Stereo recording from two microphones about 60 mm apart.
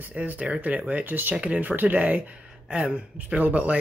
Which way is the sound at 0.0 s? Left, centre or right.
Right.